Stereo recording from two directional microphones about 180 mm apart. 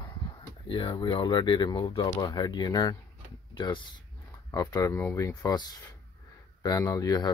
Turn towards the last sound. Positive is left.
turn(degrees=20)  # may be behind; listen again after turning